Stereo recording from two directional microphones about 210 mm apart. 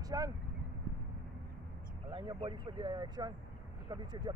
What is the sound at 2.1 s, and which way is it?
Speech, 20° right (ahead or behind).